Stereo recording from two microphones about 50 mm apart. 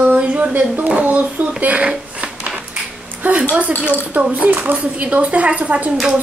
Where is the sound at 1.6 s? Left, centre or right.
Right.